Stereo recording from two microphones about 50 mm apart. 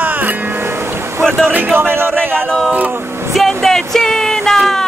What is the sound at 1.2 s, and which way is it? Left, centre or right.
Speech, right.